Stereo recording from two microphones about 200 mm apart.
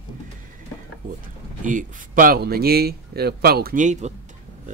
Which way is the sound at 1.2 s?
40° right (ahead or behind).